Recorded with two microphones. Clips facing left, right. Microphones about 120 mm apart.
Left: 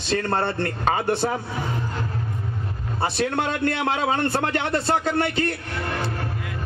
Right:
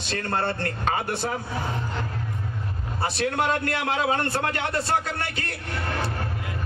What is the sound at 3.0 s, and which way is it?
A man's voice, 25° left (ahead or behind).